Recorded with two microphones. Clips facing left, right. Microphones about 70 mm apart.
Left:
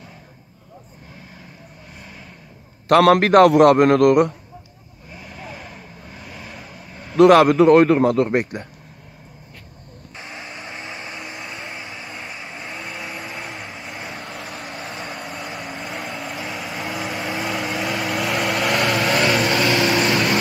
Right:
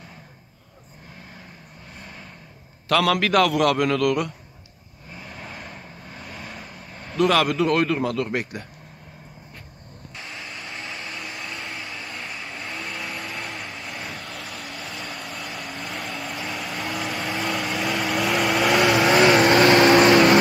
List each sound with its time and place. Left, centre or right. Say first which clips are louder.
2.0 s vehicle: even; centre
2.9 s speech: left 7 dB; left
5.1 s vehicle: left 2 dB; centre
7.2 s speech: left 9 dB; left
10.4 s vehicle: left 1 dB; centre
14.2 s vehicle: left 3 dB; left
15.0 s vehicle: left 3 dB; centre
19.6 s vehicle: right 4 dB; right